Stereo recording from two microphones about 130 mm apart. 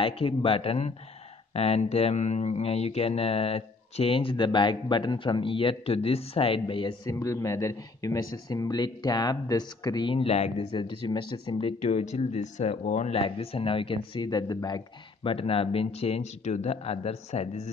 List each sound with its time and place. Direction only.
0.0 s speech: 45° left (ahead or behind)
7.1 s speech: 25° left (ahead or behind); by 10.5 s 55° left (ahead or behind)
10.7 s speech: 35° left (ahead or behind)
11.8 s speech: 60° left (ahead or behind)
13.1 s speech: 45° left (ahead or behind); by 14.8 s 30° left (ahead or behind)
15.2 s speech: 45° left (ahead or behind)